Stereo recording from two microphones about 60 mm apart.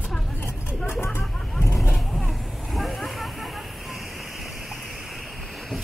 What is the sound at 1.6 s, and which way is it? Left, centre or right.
Vehicle, left.